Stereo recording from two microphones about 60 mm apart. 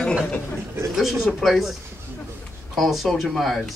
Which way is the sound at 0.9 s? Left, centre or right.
Centre.